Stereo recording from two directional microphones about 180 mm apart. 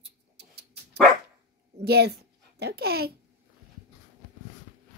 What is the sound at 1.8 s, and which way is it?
A child's voice, 65° right (ahead or behind).